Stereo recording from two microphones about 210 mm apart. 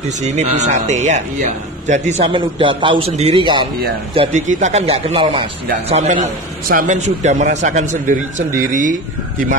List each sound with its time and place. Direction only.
0.2 s a man's voice: 35° right (ahead or behind)